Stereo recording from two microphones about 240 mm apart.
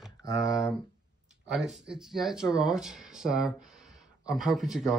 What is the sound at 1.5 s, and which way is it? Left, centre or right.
Speech, centre.